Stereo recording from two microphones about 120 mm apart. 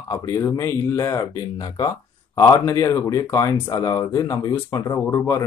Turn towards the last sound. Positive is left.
turn(degrees=30)  # may be behind; listen again after turning